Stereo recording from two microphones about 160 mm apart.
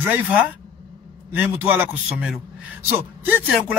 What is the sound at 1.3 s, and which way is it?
Speech, 10° right (ahead or behind).